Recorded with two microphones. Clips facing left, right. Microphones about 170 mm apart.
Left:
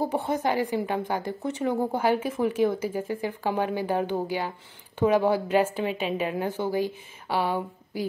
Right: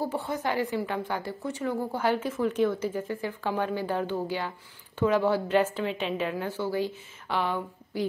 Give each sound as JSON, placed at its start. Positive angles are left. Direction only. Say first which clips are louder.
{"t": 0.0, "sound": "a woman's voice", "louder": "left 4 dB", "side_deg": 20}